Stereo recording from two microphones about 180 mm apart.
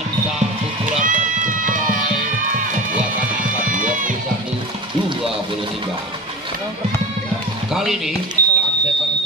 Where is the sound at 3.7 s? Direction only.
45° right (ahead or behind).